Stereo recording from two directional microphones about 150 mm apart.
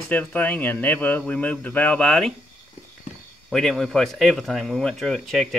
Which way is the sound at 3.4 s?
Centre (ahead or behind).